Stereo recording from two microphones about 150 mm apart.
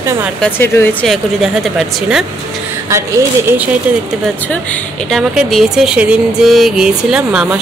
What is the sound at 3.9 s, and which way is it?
Speech, 10° right (ahead or behind).